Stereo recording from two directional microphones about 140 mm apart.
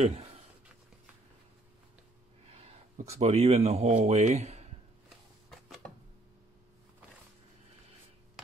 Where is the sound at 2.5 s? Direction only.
50° right (ahead or behind).